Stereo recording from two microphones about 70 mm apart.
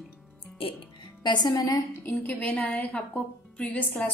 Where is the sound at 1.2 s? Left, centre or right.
Left.